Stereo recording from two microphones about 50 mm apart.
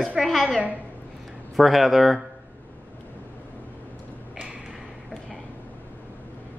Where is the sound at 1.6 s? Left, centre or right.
Centre.